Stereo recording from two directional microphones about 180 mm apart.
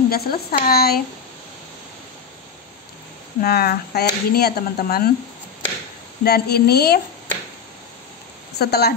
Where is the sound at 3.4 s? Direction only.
60° left (ahead or behind).